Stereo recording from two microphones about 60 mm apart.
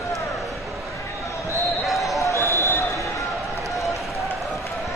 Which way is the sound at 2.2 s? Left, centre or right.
Left.